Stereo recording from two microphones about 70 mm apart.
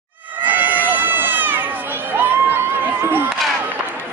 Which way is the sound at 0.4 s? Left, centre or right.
Right.